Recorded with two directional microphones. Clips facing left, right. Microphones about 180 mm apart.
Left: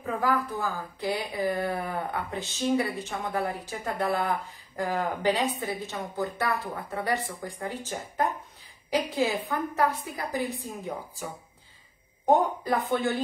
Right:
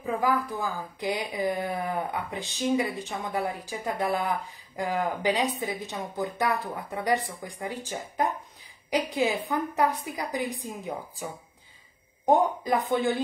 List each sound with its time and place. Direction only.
0.0 s a woman's voice: 10° right (ahead or behind)
12.6 s a woman's voice: 15° right (ahead or behind)